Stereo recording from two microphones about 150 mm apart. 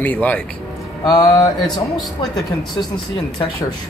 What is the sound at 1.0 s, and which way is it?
Mantra, 25° left (ahead or behind).